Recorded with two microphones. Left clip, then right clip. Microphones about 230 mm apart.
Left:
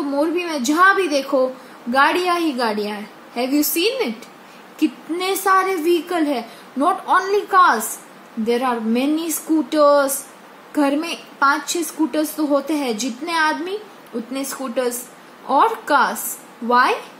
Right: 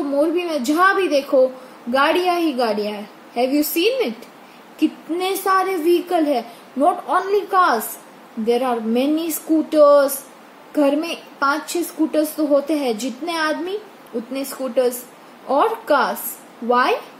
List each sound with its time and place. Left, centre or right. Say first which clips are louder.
0.2 s a woman's voice: right 1 dB; centre